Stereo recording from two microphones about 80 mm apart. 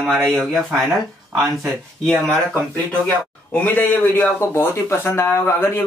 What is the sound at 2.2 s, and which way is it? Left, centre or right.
Speech, centre.